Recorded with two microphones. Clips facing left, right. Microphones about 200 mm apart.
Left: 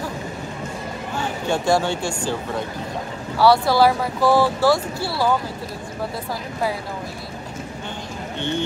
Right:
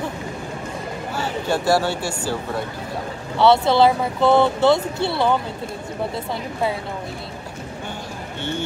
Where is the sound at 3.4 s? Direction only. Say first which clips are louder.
Right 1 dB; 25° right (ahead or behind).